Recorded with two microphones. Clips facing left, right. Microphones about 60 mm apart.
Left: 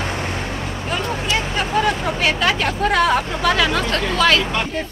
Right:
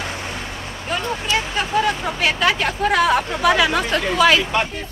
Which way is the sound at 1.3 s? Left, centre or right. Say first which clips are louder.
Right 1 dB; centre.